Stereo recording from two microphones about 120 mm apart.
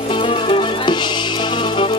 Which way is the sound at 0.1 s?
45° left (ahead or behind).